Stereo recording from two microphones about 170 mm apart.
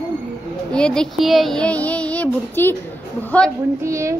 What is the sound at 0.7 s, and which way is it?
A woman's voice, 5° left (ahead or behind).